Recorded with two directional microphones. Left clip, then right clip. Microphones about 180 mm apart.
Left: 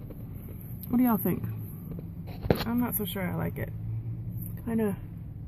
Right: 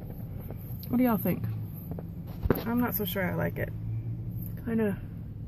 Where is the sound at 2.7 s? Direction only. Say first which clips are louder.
Right 1 dB; 5° left (ahead or behind).